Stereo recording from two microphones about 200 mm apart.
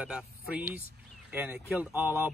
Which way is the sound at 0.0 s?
5° right (ahead or behind).